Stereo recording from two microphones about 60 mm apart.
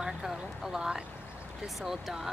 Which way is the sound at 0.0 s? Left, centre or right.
Centre.